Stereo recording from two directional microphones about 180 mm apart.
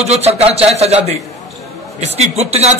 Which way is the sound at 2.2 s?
35° right (ahead or behind).